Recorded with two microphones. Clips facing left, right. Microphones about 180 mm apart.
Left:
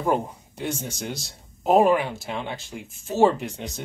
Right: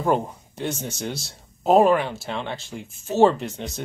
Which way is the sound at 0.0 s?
10° left (ahead or behind).